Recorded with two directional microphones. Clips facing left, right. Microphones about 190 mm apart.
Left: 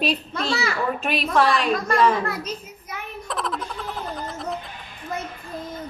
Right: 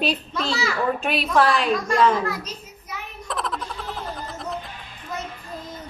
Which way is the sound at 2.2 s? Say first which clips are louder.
Even; 55° left (ahead or behind).